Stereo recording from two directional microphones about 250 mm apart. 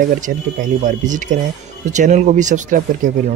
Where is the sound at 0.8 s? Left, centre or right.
Right.